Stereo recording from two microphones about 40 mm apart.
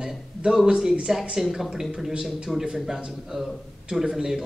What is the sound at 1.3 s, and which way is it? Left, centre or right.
A man's voice, centre.